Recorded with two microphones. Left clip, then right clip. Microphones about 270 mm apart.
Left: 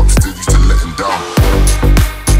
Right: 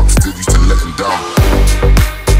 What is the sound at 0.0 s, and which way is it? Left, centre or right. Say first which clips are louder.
Music: right 1 dB; centre.